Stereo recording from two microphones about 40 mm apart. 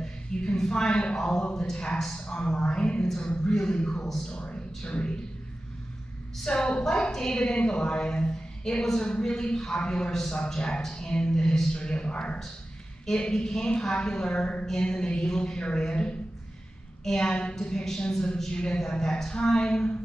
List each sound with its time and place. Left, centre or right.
0.0 s a sound: centre
1.1 s a woman's voice: centre
4.4 s speech: left
6.4 s a woman's voice: left
17.2 s a woman's voice: left